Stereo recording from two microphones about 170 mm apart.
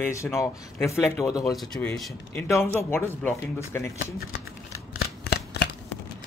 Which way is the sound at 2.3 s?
15° left (ahead or behind).